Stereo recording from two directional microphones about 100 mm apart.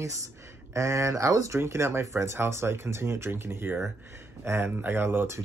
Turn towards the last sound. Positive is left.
turn(degrees=-25)  # may be behind; listen again after turning